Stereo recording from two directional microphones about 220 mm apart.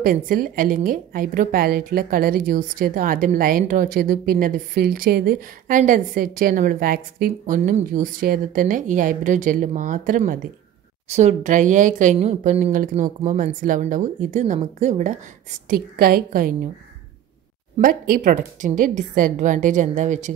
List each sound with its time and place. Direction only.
0.0 s a woman's voice: 40° right (ahead or behind)
17.7 s a woman's voice: 40° right (ahead or behind)